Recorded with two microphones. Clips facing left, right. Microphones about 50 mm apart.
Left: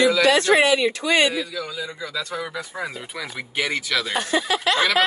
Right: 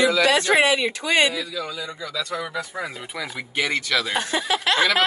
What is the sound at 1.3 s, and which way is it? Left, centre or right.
Speech, left.